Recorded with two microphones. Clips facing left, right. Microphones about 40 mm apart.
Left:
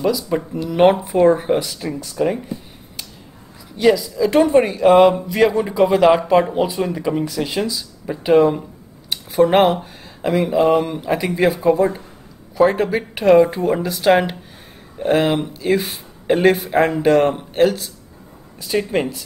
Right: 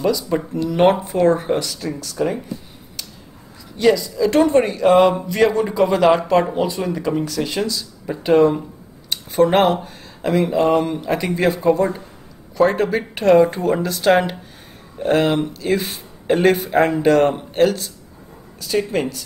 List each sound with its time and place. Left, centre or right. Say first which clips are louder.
0.0 s a man's voice: even; centre
2.1 s speech: left 2 dB; centre
3.7 s a man's voice: left 1 dB; centre
18.6 s speech: left 1 dB; centre